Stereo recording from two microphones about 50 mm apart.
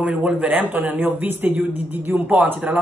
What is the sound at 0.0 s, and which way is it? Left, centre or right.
Speech, right.